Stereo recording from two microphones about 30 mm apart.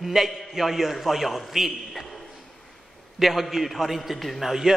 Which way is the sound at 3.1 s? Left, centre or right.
Centre.